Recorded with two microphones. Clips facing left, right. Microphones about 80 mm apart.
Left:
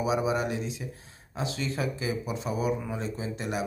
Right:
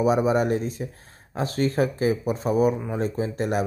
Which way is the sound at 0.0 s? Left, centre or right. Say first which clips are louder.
Right 6 dB; right.